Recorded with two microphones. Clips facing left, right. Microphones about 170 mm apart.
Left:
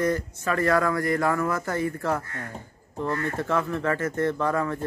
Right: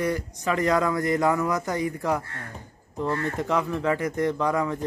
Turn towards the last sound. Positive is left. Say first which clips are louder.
# right 1 dB
turn(degrees=-15)  # may be behind; listen again after turning